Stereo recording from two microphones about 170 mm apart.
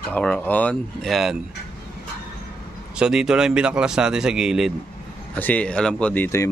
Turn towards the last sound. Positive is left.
turn(degrees=15)  # may be behind; listen again after turning